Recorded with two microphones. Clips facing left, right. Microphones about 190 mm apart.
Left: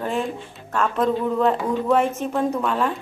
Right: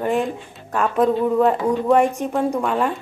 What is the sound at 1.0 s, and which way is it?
Speech, centre (ahead or behind).